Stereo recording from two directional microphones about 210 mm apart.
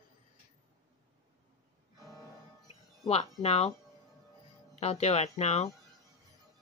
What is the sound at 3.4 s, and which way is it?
Speech, 30° left (ahead or behind).